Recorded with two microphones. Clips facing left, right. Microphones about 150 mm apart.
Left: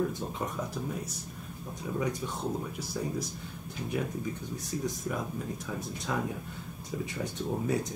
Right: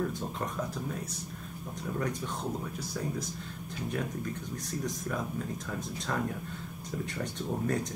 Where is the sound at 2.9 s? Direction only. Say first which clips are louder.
Left 2 dB; 10° left (ahead or behind).